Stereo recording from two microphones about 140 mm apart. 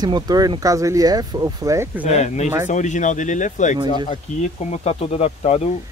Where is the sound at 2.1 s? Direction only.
55° left (ahead or behind).